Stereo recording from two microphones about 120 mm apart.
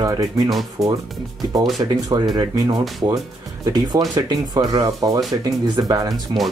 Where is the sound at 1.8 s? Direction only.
30° right (ahead or behind).